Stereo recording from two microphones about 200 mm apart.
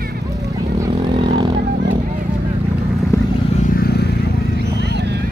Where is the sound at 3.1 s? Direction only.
15° left (ahead or behind).